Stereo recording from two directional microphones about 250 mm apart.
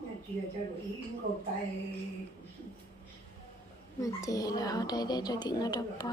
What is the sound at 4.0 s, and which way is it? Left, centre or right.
A woman's voice, centre.